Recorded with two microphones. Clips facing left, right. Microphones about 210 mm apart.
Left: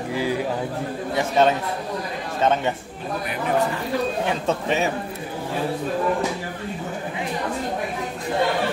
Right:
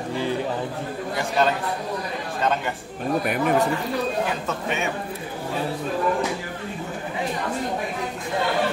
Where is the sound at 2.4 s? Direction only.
25° left (ahead or behind).